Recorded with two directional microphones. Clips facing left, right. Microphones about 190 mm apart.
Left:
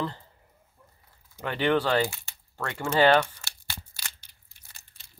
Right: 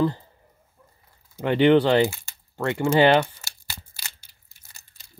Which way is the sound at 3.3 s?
5° right (ahead or behind).